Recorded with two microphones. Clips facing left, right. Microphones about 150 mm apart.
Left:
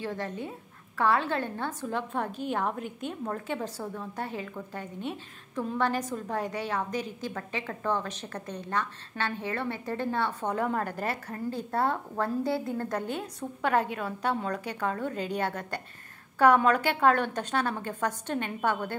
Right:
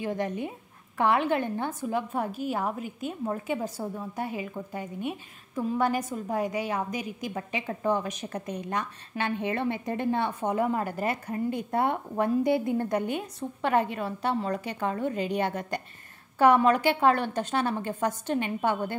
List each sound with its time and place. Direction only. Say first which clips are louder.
0.0 s a woman's voice: right 4 dB; 15° right (ahead or behind)
13.4 s a woman's voice: right 1 dB; centre (ahead or behind)